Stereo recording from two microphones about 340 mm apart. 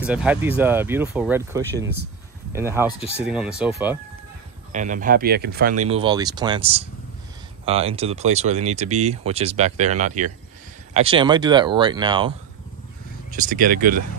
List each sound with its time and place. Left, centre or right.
0.0 s speech: centre
2.9 s speech: centre
3.3 s speech: centre
4.7 s speech: right
13.3 s speech: right